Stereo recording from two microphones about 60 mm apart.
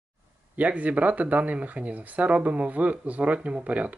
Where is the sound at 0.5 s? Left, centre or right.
Right.